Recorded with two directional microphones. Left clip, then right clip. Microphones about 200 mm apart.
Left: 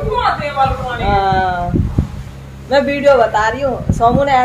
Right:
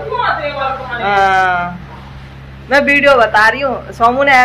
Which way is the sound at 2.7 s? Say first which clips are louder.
Right 2 dB; 10° right (ahead or behind).